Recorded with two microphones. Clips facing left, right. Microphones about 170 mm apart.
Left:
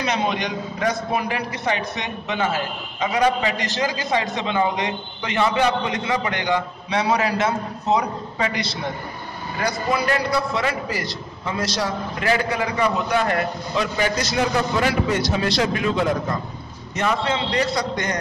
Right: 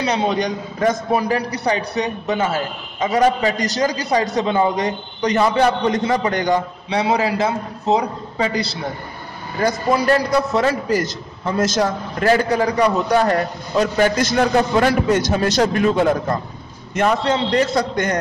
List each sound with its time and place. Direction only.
0.0 s a man's voice: 35° right (ahead or behind)
9.6 s a man's voice: 40° right (ahead or behind)